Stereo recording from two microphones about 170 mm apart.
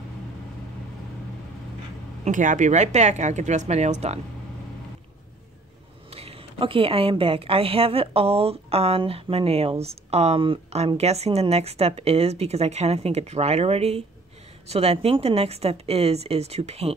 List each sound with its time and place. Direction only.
2.2 s speech: 50° right (ahead or behind)
6.0 s speech: 35° right (ahead or behind)